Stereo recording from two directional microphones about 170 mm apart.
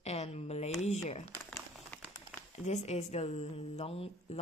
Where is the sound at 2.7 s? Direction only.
45° left (ahead or behind).